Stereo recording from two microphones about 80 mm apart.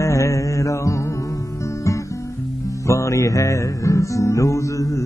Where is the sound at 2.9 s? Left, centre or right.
Left.